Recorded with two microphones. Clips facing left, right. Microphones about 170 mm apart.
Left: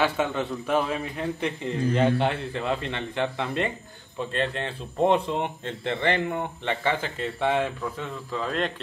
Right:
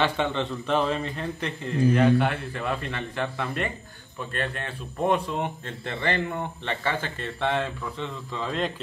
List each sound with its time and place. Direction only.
0.0 s speech: 5° left (ahead or behind)